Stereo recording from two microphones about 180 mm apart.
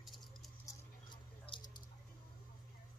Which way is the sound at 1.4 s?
25° left (ahead or behind).